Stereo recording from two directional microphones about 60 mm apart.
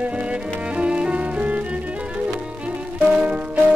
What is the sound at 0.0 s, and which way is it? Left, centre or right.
Music, centre.